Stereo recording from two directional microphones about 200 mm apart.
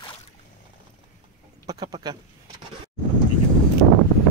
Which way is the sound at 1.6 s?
20° right (ahead or behind).